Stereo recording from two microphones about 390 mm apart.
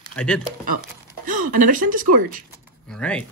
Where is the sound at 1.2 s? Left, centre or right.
Right.